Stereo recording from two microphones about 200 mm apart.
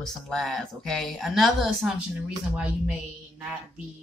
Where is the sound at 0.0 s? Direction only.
Centre (ahead or behind).